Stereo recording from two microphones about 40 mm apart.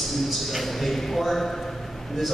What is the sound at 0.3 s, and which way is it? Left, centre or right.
A man's voice, centre.